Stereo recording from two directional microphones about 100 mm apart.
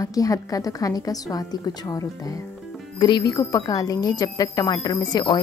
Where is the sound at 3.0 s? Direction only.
50° left (ahead or behind).